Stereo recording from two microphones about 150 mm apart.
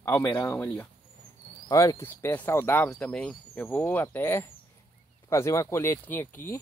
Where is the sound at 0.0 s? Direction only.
15° left (ahead or behind).